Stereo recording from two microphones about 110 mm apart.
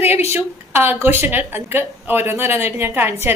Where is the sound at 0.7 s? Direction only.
20° right (ahead or behind).